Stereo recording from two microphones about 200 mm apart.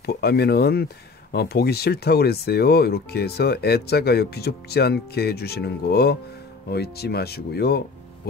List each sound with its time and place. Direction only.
0.0 s speech: 55° left (ahead or behind)